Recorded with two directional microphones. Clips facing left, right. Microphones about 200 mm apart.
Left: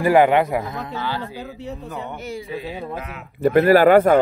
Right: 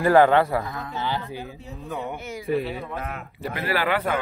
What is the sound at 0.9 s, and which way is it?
Speech, 20° right (ahead or behind).